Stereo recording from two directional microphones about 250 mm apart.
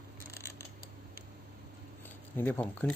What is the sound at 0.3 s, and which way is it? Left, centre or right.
Scissors, centre.